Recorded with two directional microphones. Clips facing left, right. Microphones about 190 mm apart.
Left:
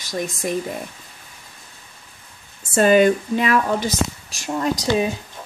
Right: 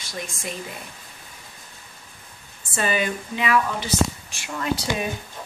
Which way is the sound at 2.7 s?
45° left (ahead or behind).